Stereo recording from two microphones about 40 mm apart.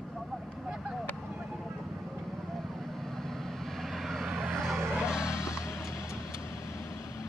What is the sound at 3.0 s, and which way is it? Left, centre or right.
Vehicle, centre.